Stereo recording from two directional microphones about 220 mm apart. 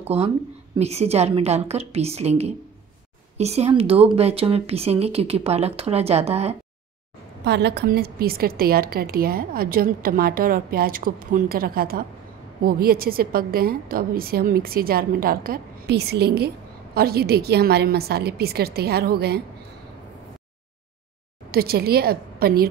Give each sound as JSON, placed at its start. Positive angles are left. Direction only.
{"t": 0.0, "sound": "speech", "side_deg": -30}
{"t": 7.4, "sound": "a woman's voice", "side_deg": -50}
{"t": 21.5, "sound": "a woman's voice", "side_deg": -45}